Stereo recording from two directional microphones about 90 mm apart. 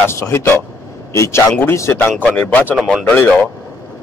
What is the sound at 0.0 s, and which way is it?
A man's voice, 30° left (ahead or behind).